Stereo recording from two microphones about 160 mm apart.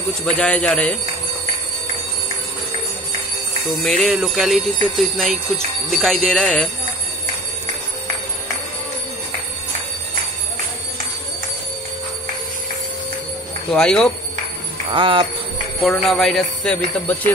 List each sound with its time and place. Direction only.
0.2 s speech: 5° left (ahead or behind)
3.8 s speech: centre (ahead or behind)
13.7 s speech: 5° left (ahead or behind)
14.9 s jingle bell: 30° right (ahead or behind)
15.8 s speech: centre (ahead or behind)